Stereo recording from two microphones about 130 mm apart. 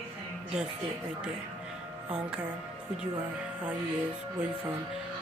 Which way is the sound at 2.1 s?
10° right (ahead or behind).